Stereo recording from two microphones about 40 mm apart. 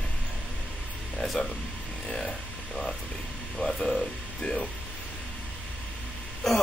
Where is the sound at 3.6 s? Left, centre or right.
Centre.